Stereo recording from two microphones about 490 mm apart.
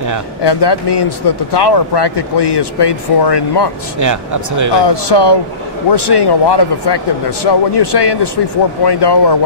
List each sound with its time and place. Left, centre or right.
0.4 s speech: left
4.0 s speech: right
4.7 s speech: left